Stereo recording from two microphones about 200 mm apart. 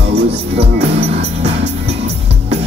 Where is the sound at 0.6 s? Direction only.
30° right (ahead or behind).